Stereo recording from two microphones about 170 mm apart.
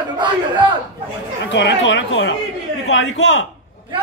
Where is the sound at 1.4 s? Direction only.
90° left.